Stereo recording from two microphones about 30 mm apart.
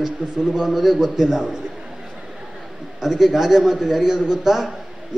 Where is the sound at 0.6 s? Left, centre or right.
Centre.